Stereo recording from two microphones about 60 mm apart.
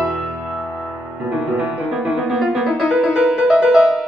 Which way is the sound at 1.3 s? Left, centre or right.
Right.